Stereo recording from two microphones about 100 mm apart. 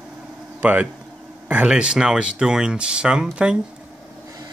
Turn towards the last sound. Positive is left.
turn(degrees=-10)  # may be behind; listen again after turning